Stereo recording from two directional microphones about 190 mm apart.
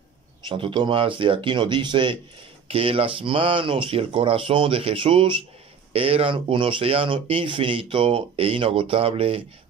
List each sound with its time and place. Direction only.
0.5 s speech: 25° right (ahead or behind)